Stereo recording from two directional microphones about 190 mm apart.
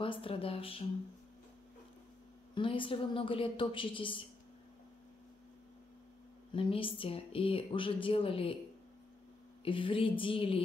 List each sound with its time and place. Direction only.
0.0 s a woman's voice: 30° left (ahead or behind)
2.5 s a woman's voice: 25° left (ahead or behind)
6.5 s a woman's voice: 30° left (ahead or behind)
9.7 s a woman's voice: 25° left (ahead or behind)